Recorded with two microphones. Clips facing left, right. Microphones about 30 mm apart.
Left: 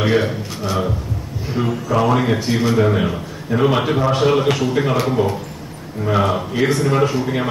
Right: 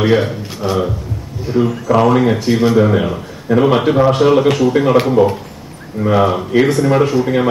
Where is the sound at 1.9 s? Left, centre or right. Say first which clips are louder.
Right 4 dB; centre.